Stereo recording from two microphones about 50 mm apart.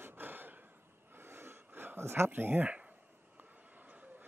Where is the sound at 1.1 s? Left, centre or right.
Right.